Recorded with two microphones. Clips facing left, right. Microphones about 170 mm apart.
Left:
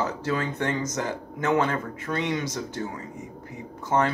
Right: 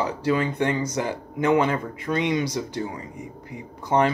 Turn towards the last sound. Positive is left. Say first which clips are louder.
# right 3 dB
turn(degrees=-15)  # may be behind; listen again after turning